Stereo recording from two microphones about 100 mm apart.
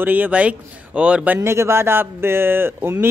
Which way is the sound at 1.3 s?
25° right (ahead or behind).